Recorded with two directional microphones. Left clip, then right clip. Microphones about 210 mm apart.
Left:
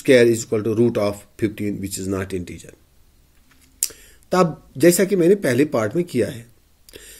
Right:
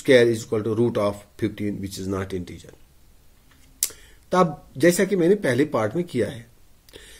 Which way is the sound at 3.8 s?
15° left (ahead or behind).